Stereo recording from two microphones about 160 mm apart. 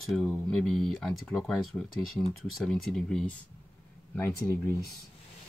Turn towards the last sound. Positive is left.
turn(degrees=15)  # may be behind; listen again after turning